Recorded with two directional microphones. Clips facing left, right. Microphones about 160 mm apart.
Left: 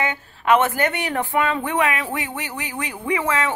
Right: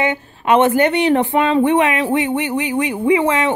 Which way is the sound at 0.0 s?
20° right (ahead or behind).